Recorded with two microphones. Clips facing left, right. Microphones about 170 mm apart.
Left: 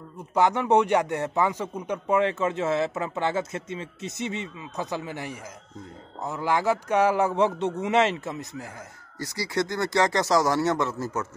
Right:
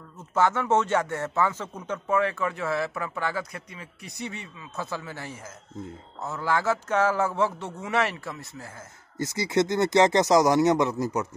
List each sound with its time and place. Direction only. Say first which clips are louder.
0.3 s a man's voice: left 2 dB; 15° left (ahead or behind)
9.2 s speech: right 4 dB; 20° right (ahead or behind)